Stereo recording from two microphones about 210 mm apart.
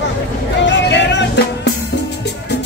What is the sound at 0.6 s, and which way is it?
Music, 55° left (ahead or behind).